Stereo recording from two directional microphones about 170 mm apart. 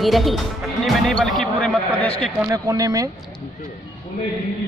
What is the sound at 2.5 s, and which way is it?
Speech, 20° right (ahead or behind).